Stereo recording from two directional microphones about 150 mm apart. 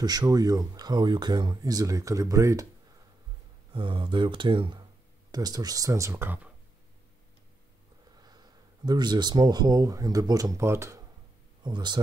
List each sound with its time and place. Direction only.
0.0 s speech: 25° right (ahead or behind)
3.7 s speech: 30° right (ahead or behind); by 6.5 s 15° right (ahead or behind)
8.2 s speech: 25° right (ahead or behind)
11.6 s speech: 30° right (ahead or behind)